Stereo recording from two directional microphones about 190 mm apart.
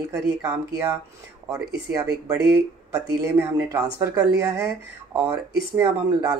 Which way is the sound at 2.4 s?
15° right (ahead or behind).